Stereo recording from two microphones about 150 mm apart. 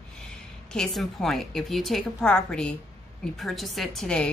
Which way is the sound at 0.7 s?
Centre (ahead or behind).